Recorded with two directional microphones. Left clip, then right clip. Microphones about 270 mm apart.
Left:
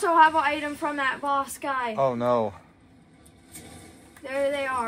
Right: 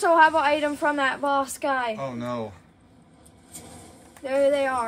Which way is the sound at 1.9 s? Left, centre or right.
Centre.